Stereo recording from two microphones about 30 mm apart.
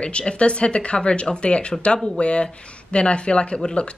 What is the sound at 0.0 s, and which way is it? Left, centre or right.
Speech, left.